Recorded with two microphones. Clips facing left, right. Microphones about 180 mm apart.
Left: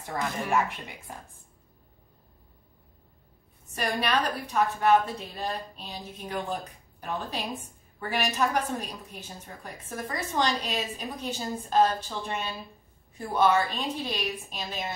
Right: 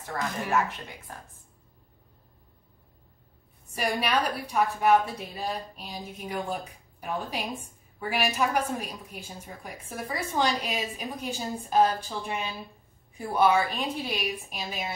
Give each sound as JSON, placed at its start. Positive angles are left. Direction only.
{"t": 0.1, "sound": "speech", "side_deg": 15}
{"t": 3.7, "sound": "a woman's voice", "side_deg": -10}